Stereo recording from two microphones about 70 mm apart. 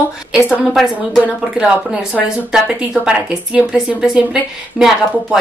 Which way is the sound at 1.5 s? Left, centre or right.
Centre.